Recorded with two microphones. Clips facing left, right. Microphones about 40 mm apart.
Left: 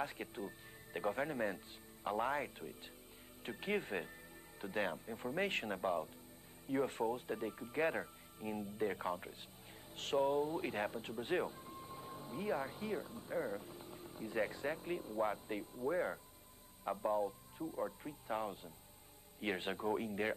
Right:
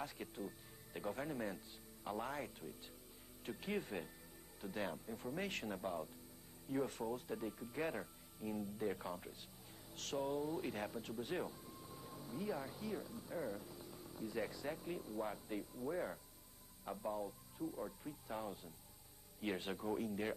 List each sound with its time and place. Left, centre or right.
0.0 s speech: left